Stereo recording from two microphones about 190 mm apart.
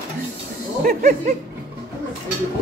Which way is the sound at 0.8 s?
45° right (ahead or behind).